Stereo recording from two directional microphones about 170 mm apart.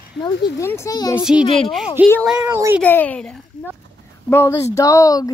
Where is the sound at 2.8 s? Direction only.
10° left (ahead or behind).